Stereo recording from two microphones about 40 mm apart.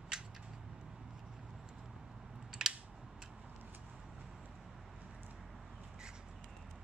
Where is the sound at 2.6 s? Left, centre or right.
Centre.